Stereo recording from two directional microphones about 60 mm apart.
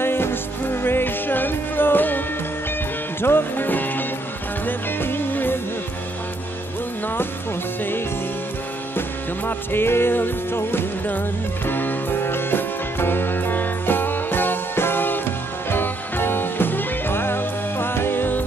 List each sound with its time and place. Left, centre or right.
0.0 s music: left
9.5 s music: left